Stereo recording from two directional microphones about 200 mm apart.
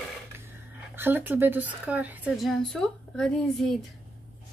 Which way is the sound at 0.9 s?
10° right (ahead or behind).